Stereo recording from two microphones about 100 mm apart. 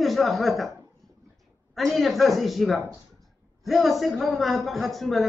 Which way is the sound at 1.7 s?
Centre (ahead or behind).